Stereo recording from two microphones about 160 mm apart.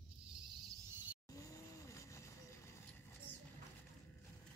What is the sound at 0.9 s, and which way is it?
Vehicle, 10° right (ahead or behind).